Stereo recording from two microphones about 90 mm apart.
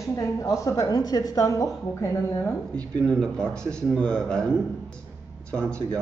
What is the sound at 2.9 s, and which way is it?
Speech, 10° left (ahead or behind).